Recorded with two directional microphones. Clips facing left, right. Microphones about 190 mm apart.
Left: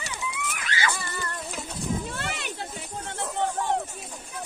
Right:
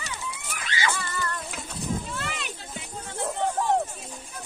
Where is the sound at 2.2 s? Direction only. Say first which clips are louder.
Left 2 dB; 60° left (ahead or behind).